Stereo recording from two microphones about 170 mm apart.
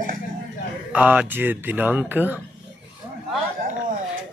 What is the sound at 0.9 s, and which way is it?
Speech, 10° right (ahead or behind).